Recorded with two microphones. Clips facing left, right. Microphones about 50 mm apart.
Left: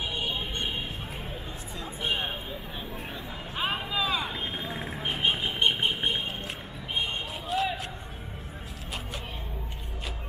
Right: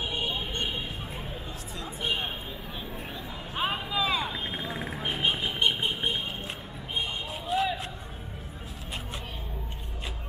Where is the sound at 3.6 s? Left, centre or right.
Centre.